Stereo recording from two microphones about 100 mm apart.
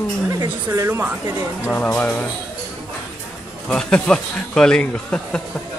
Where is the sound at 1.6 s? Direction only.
15° left (ahead or behind).